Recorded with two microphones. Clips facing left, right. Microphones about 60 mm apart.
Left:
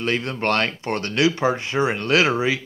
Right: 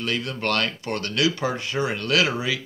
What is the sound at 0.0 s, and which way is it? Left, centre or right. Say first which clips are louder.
Speech: left 4 dB; left.